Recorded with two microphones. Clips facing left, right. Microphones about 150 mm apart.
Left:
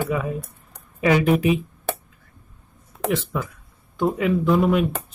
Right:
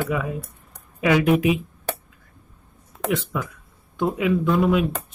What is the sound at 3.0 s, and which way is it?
Speech, centre (ahead or behind).